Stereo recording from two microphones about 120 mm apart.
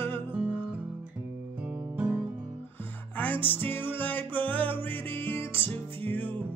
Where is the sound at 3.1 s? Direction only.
15° left (ahead or behind).